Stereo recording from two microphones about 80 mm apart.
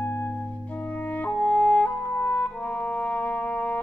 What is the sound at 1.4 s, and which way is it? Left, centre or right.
Music, centre.